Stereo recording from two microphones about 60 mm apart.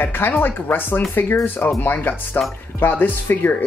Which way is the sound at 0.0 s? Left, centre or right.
Left.